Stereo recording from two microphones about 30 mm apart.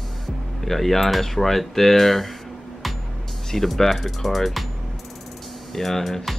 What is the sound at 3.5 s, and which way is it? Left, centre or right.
Speech, centre.